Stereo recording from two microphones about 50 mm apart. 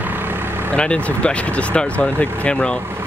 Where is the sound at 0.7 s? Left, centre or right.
Left.